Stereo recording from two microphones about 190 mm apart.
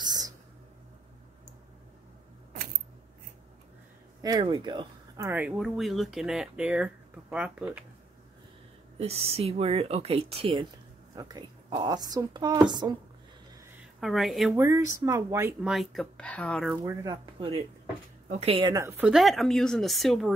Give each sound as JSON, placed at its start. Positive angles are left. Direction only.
{"t": 0.0, "sound": "a sound", "side_deg": -20}
{"t": 4.2, "sound": "speech", "side_deg": -20}
{"t": 5.2, "sound": "speech", "side_deg": -10}
{"t": 8.9, "sound": "a woman's voice", "side_deg": -30}
{"t": 13.9, "sound": "speech", "side_deg": 0}
{"t": 14.5, "sound": "speech", "side_deg": -15}
{"t": 15.6, "sound": "speech", "side_deg": 0}
{"t": 16.7, "sound": "speech", "side_deg": -15}
{"t": 17.4, "sound": "a woman's voice", "side_deg": -30}